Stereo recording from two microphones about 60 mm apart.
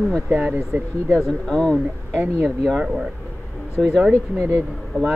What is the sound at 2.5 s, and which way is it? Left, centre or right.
Speech, centre.